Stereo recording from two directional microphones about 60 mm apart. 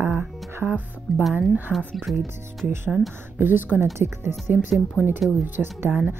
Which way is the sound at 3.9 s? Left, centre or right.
Right.